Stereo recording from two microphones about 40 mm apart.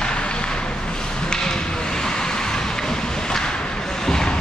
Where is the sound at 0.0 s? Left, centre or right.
Left.